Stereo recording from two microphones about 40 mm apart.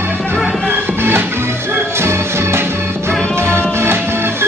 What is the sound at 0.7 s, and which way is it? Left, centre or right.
Music, right.